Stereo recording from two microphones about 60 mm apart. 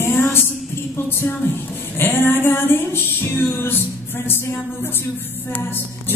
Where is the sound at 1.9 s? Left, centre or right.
Left.